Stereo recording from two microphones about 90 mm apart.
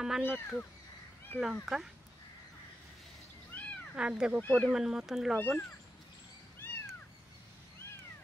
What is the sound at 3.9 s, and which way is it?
Speech, 10° right (ahead or behind).